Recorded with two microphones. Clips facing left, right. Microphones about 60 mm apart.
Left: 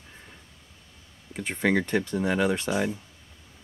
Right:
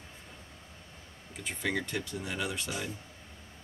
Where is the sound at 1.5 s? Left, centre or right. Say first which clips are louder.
Left 9 dB; left.